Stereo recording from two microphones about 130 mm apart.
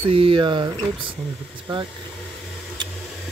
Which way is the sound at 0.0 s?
45° right (ahead or behind).